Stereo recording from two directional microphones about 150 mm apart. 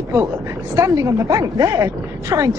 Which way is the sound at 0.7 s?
20° right (ahead or behind).